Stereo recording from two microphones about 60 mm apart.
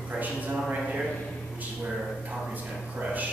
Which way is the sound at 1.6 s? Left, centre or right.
Right.